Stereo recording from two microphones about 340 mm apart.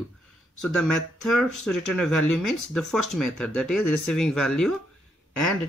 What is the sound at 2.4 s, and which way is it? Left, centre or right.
Speech, left.